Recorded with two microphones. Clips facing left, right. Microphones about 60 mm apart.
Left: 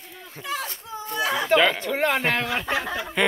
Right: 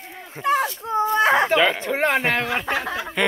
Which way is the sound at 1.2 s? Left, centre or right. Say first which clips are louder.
Right 6 dB; right.